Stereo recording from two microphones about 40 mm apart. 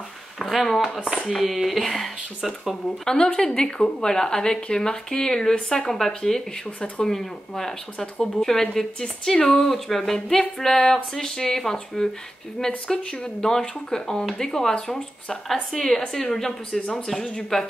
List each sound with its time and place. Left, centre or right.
0.4 s a sound: centre
1.3 s speech: centre
3.2 s speech: left; by 16.5 s centre
16.7 s speech: left
17.0 s speech: centre